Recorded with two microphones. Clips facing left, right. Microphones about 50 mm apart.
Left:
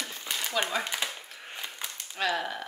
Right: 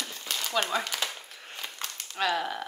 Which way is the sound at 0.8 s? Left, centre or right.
Centre.